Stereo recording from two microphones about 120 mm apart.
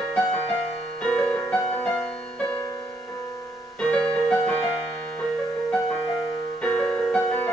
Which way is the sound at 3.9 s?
10° left (ahead or behind).